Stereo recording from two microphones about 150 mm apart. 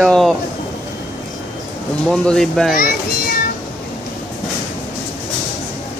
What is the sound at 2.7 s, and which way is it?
Speech, 75° left (ahead or behind).